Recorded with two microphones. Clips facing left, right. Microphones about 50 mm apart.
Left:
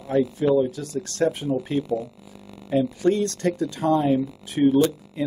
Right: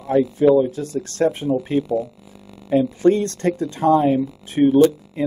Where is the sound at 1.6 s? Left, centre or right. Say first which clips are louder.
Right 4 dB; centre.